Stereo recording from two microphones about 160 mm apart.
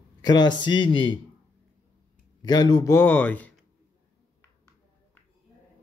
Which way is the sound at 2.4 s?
25° left (ahead or behind).